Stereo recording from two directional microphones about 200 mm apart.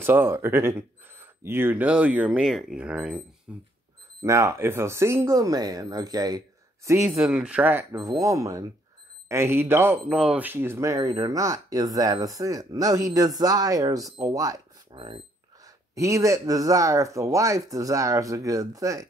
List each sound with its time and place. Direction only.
0.0 s speech: 10° right (ahead or behind)
7.2 s speech: 5° right (ahead or behind)